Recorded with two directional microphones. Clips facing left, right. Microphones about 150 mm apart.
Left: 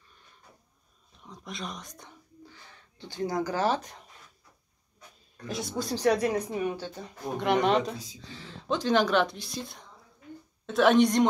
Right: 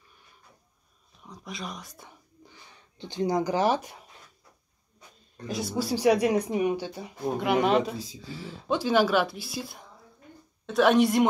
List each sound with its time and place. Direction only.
1.2 s speech: centre (ahead or behind)
2.4 s speech: 15° right (ahead or behind)
5.5 s speech: centre (ahead or behind)